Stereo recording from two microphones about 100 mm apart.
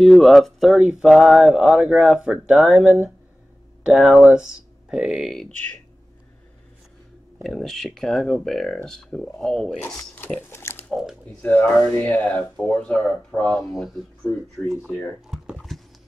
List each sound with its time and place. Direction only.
0.0 s speech: centre (ahead or behind)
7.4 s speech: 5° left (ahead or behind)
10.5 s speech: 25° left (ahead or behind)
10.9 s speech: centre (ahead or behind)
11.4 s speech: 15° left (ahead or behind)
13.6 s speech: 5° right (ahead or behind)
15.2 s a sound: 5° right (ahead or behind)